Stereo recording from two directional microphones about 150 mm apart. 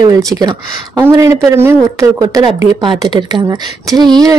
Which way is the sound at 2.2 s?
30° right (ahead or behind).